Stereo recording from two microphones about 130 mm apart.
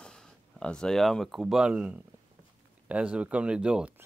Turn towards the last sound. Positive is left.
turn(degrees=-5)  # may be behind; listen again after turning